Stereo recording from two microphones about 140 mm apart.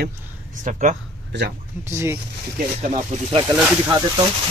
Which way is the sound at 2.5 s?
60° right (ahead or behind).